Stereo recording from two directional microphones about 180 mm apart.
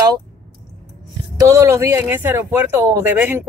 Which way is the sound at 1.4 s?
15° right (ahead or behind).